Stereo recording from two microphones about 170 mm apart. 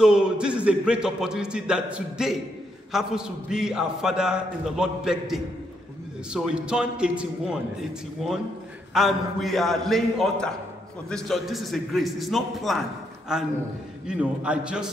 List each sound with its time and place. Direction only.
0.0 s a man's voice: 5° right (ahead or behind)